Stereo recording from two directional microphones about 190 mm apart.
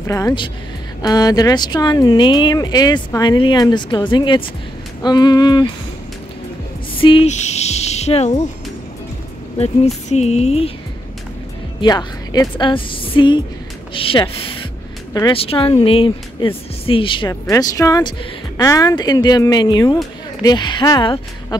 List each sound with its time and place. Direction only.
0.0 s speech: 15° left (ahead or behind)
7.0 s a woman's voice: 30° left (ahead or behind)
10.0 s a woman's voice: 35° left (ahead or behind)
11.8 s speech: 20° left (ahead or behind)